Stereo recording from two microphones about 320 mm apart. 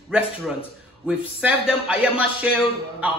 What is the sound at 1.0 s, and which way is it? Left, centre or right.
A man's voice, centre.